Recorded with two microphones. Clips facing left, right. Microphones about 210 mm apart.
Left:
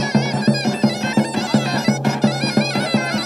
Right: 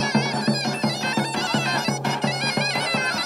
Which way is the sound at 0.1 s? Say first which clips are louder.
Left 7 dB; 25° left (ahead or behind).